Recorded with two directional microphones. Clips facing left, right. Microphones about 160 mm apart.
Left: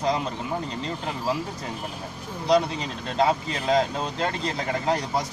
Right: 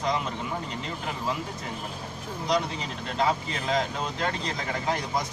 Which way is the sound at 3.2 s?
35° left (ahead or behind).